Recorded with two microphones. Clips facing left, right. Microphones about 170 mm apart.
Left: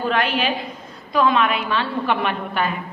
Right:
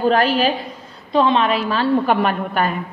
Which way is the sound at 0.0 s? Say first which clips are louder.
Right 5 dB; 35° right (ahead or behind).